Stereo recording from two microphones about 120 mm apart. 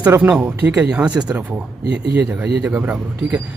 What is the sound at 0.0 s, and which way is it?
Speech, 15° right (ahead or behind).